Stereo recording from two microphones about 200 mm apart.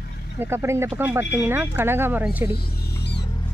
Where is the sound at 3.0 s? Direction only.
55° left (ahead or behind).